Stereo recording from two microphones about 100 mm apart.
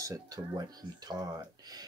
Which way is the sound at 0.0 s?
35° right (ahead or behind).